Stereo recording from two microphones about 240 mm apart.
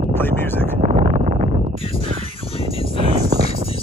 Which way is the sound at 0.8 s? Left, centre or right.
Right.